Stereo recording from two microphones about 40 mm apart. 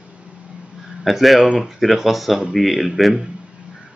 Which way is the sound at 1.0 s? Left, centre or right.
Centre.